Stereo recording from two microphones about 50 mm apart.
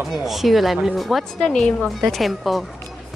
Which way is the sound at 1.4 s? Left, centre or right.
Centre.